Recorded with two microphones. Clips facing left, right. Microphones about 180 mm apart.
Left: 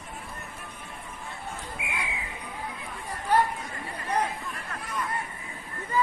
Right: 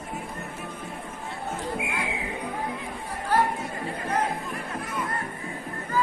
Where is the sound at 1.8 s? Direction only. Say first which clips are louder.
Right 5 dB; 60° right (ahead or behind).